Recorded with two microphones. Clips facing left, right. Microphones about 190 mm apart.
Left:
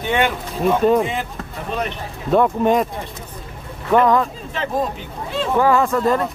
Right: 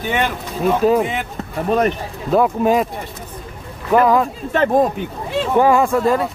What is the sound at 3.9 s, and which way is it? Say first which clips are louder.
Speech: right 1 dB; 5° right (ahead or behind).